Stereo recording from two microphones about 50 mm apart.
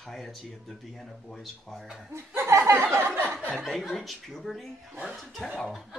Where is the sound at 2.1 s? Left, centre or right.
Right.